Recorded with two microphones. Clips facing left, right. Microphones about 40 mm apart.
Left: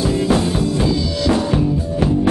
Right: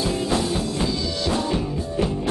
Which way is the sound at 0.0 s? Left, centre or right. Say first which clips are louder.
Left 6 dB; left.